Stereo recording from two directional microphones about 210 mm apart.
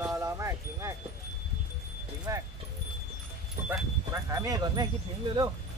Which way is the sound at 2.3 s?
15° right (ahead or behind).